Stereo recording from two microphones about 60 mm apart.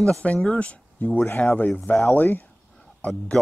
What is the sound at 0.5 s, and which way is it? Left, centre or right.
Speech, left.